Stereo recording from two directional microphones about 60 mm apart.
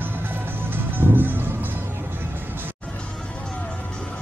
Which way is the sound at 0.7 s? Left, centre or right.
Right.